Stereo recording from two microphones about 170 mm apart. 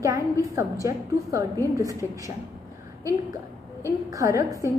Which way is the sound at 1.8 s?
20° right (ahead or behind).